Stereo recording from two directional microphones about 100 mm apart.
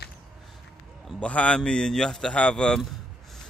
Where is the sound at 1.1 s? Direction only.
10° left (ahead or behind).